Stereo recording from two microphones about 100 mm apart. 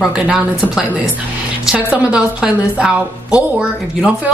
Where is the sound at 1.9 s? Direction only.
10° right (ahead or behind).